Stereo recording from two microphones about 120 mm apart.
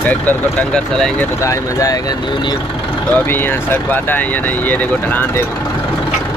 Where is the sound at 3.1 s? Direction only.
15° left (ahead or behind).